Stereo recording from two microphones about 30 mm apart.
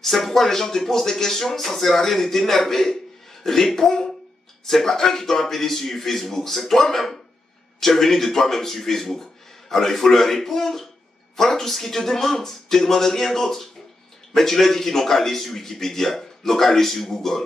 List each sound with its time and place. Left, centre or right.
0.0 s speech: centre